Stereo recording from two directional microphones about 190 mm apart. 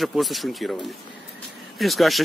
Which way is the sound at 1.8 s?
Centre (ahead or behind).